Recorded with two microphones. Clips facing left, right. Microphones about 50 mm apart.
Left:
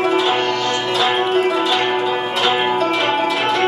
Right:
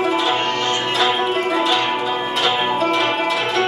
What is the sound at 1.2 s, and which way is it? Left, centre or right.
Music, centre.